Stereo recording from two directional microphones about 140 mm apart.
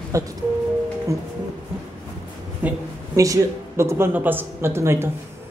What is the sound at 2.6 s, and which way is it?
Speech, 10° right (ahead or behind).